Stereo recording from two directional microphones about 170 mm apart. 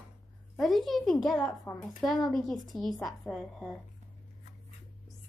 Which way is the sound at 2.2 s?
Centre (ahead or behind).